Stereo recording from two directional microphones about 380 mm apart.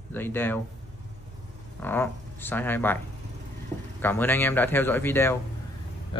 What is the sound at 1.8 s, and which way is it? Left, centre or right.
Speech, centre.